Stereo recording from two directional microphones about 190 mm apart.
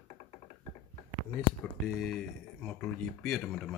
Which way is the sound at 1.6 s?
5° left (ahead or behind).